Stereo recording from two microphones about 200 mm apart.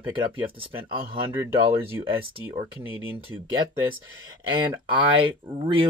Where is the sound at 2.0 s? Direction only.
25° right (ahead or behind).